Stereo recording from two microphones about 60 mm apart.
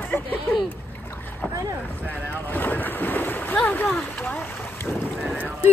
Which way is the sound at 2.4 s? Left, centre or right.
Left.